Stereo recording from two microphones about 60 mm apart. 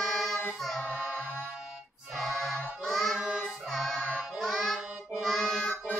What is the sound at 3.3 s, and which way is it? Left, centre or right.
Music, centre.